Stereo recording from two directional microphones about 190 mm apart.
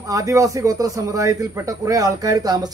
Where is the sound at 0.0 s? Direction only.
15° right (ahead or behind).